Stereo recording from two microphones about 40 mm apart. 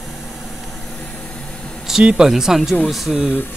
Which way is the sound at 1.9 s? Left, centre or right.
Centre.